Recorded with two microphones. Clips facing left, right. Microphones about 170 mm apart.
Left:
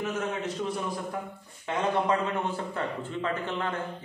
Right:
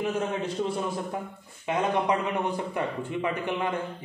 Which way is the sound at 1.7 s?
15° right (ahead or behind).